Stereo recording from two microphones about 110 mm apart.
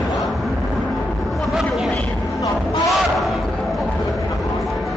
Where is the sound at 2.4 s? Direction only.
30° left (ahead or behind).